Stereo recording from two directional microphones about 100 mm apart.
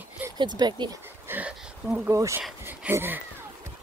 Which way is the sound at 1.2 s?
15° right (ahead or behind).